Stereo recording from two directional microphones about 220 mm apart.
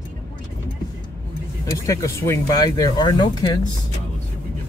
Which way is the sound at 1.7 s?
15° left (ahead or behind).